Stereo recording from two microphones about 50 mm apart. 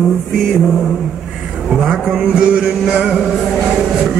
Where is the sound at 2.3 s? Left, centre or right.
Centre.